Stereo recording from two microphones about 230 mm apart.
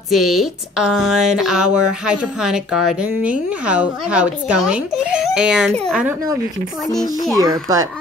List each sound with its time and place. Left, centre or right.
0.1 s a woman's voice: centre
7.5 s speech: centre